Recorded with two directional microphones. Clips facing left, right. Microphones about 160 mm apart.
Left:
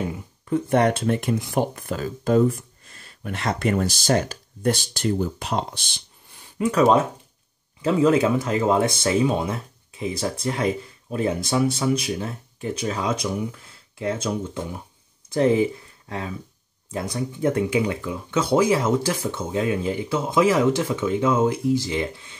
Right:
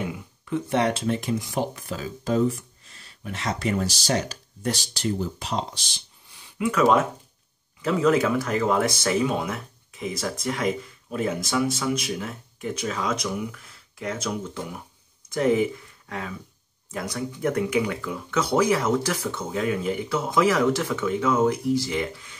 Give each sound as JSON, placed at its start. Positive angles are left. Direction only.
{"t": 0.1, "sound": "speech", "side_deg": 45}
{"t": 6.8, "sound": "speech", "side_deg": 30}